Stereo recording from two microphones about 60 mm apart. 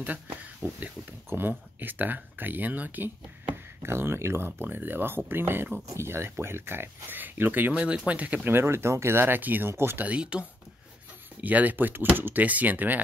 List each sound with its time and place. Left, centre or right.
0.0 s a sound: right
0.7 s speech: right
3.8 s speech: right
4.5 s speech: right
8.5 s speech: right
10.0 s speech: centre
11.4 s speech: right